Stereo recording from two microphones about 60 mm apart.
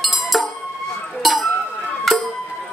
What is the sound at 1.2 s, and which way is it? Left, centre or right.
Chink, centre.